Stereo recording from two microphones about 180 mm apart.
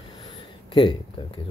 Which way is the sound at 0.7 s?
30° left (ahead or behind).